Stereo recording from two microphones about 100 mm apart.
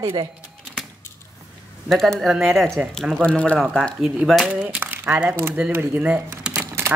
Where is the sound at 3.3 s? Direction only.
10° left (ahead or behind).